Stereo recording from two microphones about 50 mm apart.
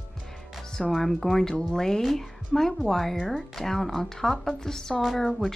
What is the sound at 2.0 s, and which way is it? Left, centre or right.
Speech, centre.